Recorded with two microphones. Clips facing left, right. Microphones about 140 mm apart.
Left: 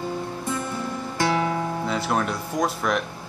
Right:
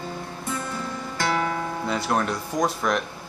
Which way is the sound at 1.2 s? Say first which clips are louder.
Left 2 dB; 20° left (ahead or behind).